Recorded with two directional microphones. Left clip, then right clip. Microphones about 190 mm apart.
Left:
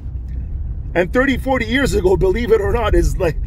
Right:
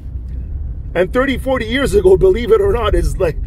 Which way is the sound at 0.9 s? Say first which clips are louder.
Right 1 dB; 10° left (ahead or behind).